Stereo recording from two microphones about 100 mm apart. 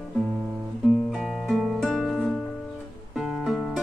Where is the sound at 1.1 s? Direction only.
Centre (ahead or behind).